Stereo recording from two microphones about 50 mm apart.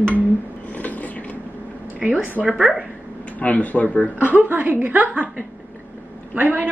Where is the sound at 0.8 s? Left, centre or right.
Left.